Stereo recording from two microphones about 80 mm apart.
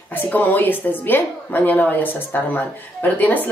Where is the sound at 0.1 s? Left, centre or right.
Left.